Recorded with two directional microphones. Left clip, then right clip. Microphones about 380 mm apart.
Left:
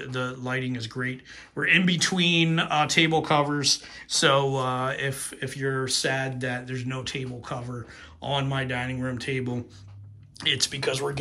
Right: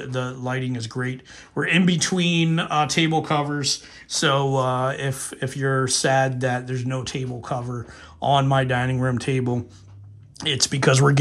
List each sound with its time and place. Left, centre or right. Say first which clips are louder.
0.0 s speech: right 3 dB; centre